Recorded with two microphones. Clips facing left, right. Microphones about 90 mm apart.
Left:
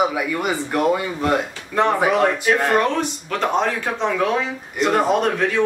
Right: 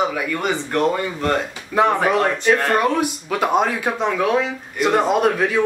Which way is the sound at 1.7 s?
5° right (ahead or behind).